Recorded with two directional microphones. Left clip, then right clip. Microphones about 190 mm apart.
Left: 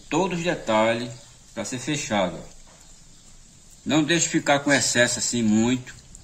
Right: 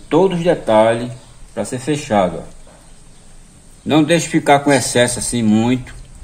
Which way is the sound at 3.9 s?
35° right (ahead or behind).